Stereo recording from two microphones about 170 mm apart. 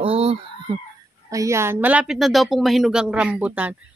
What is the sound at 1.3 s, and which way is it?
A woman's voice, 15° right (ahead or behind).